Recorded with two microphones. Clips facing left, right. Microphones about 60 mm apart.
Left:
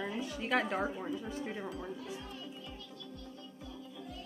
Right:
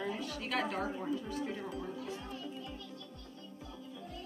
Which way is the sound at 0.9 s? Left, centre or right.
Centre.